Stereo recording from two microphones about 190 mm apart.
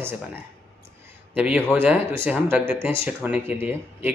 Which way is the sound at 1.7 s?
10° right (ahead or behind).